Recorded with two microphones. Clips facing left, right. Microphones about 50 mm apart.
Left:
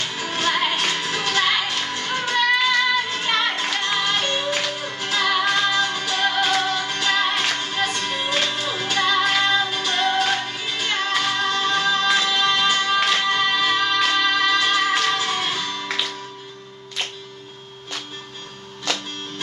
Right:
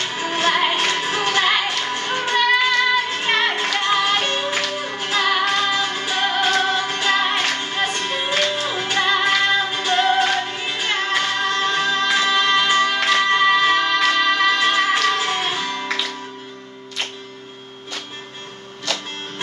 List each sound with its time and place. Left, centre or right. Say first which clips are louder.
0.1 s music: right 4 dB; right